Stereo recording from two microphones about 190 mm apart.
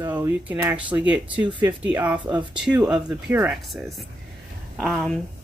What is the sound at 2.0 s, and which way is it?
Speech, 10° right (ahead or behind).